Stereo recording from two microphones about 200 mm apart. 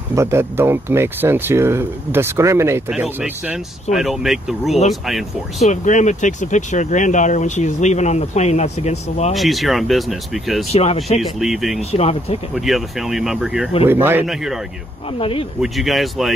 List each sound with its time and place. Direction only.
0.1 s speech: 15° right (ahead or behind)
5.6 s speech: 35° left (ahead or behind)
9.3 s speech: centre (ahead or behind)
10.7 s speech: 30° left (ahead or behind)
11.1 s speech: centre (ahead or behind)
11.9 s speech: 30° left (ahead or behind)
12.5 s speech: centre (ahead or behind)
15.1 s speech: 25° left (ahead or behind)
15.6 s speech: centre (ahead or behind)